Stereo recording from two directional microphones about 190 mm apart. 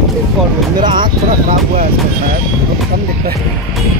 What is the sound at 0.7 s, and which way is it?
Speech, 25° right (ahead or behind).